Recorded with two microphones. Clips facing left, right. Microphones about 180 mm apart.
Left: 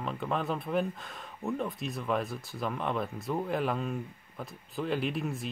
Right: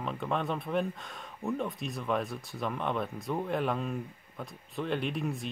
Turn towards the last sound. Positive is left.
turn(degrees=0)  # may be behind; listen again after turning